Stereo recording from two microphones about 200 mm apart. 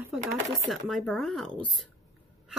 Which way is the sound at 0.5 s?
Centre (ahead or behind).